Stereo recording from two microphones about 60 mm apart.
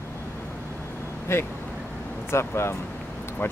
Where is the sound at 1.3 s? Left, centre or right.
Left.